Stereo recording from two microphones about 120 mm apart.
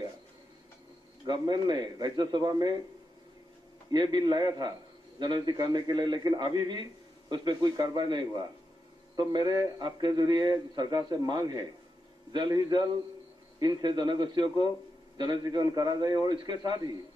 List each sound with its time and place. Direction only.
1.2 s a man's voice: 35° right (ahead or behind)
3.9 s a man's voice: 40° right (ahead or behind)